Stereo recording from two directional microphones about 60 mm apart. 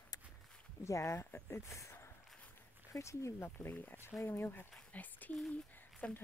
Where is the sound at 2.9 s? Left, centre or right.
Left.